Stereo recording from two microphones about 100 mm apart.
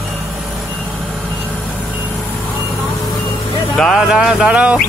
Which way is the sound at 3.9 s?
5° right (ahead or behind).